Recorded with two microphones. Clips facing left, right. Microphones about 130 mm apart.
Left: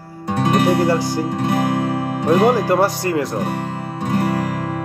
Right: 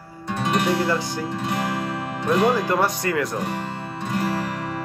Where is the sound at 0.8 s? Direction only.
35° left (ahead or behind).